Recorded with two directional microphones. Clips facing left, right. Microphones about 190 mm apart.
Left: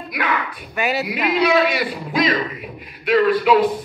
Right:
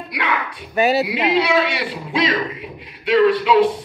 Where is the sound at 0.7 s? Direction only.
30° right (ahead or behind).